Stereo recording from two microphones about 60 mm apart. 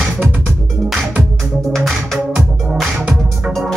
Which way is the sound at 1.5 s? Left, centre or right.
Centre.